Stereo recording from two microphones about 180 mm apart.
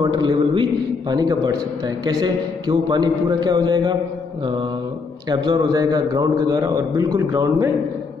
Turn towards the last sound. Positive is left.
turn(degrees=-20)  # may be behind; listen again after turning